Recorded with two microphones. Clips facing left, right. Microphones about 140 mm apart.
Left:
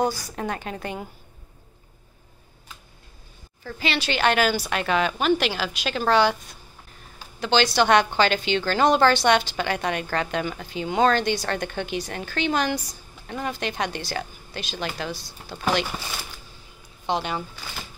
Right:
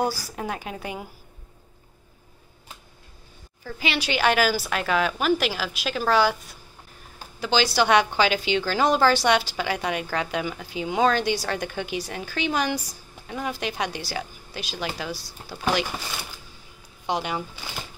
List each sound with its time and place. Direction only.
0.0 s speech: 5° right (ahead or behind)
3.6 s speech: 10° right (ahead or behind)
7.3 s speech: 5° right (ahead or behind)